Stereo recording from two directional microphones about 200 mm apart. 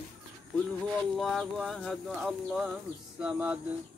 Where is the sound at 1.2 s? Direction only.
5° left (ahead or behind).